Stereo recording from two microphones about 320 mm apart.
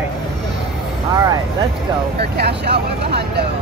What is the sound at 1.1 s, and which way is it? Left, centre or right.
Speech, centre.